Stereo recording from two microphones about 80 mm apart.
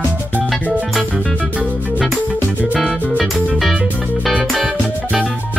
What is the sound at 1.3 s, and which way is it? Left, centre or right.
Music, centre.